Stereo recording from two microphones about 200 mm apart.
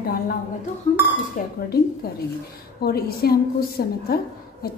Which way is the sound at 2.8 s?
50° left (ahead or behind).